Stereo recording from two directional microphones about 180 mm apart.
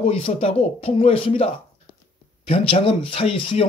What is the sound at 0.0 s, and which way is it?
Speech, 30° left (ahead or behind).